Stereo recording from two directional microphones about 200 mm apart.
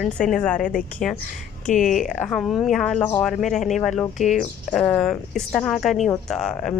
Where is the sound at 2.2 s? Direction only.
Centre (ahead or behind).